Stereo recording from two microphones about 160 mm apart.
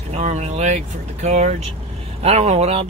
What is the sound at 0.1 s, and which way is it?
Speech, 45° right (ahead or behind).